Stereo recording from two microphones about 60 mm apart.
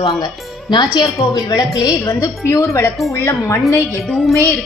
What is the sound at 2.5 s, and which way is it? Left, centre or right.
Speech, left.